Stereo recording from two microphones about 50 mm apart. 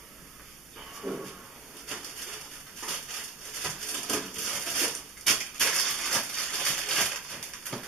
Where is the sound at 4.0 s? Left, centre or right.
Centre.